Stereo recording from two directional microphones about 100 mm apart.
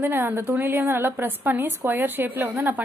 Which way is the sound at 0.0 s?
20° right (ahead or behind).